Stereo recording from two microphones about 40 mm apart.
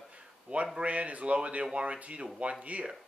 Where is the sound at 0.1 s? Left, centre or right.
Right.